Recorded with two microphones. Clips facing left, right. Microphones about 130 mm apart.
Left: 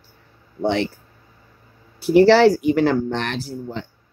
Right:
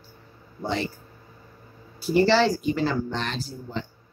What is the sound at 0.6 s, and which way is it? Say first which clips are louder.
Speech: left 7 dB; 70° left (ahead or behind).